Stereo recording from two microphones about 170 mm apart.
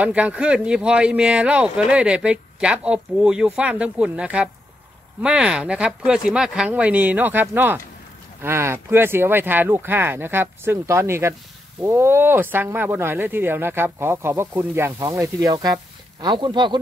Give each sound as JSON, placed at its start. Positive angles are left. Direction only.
{"t": 0.0, "sound": "speech", "side_deg": -10}